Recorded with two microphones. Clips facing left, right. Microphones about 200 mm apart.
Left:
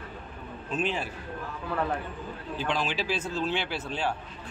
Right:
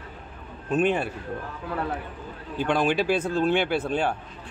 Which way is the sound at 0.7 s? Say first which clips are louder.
Right 8 dB; 55° right (ahead or behind).